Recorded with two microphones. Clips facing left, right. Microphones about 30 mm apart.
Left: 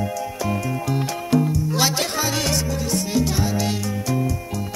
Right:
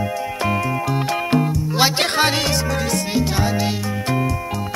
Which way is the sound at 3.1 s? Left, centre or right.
Right.